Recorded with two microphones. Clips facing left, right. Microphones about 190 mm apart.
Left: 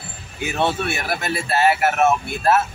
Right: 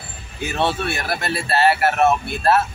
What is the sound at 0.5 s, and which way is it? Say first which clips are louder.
Speech: even; 10° left (ahead or behind).